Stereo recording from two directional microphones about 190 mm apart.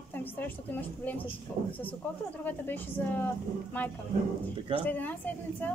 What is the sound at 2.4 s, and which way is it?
Speech, 10° left (ahead or behind).